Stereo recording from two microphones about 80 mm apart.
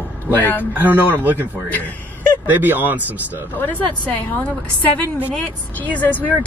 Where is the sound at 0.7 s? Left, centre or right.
Right.